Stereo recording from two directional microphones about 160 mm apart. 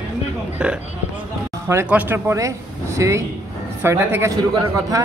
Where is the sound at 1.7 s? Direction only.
15° right (ahead or behind).